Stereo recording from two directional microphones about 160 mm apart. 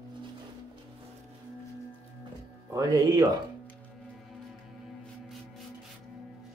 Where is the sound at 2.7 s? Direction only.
20° right (ahead or behind).